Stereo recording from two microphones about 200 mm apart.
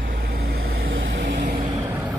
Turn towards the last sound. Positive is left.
turn(degrees=-50)  # may be behind; listen again after turning